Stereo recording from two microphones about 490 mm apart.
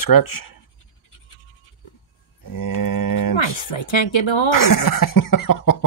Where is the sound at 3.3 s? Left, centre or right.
Left.